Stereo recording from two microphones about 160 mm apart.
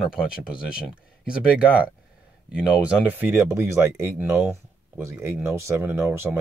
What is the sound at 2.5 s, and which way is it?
Speech, 10° right (ahead or behind).